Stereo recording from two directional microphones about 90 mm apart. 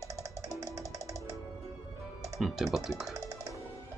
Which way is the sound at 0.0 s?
35° right (ahead or behind).